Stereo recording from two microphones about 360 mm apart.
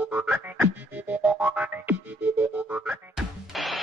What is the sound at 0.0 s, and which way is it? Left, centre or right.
Music, centre.